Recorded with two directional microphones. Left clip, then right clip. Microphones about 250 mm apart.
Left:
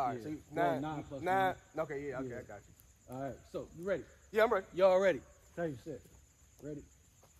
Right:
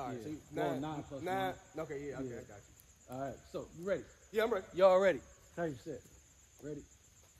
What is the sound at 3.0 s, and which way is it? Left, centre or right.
Cricket, centre.